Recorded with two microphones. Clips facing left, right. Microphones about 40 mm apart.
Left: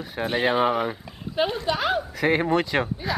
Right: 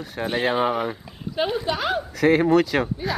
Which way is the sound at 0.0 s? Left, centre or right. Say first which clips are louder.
Even; centre.